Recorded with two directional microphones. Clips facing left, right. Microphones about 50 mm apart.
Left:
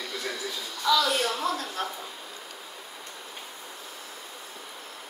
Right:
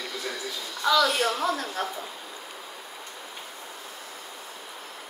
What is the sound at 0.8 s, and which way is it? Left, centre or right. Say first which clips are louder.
Speech: right 2 dB; right.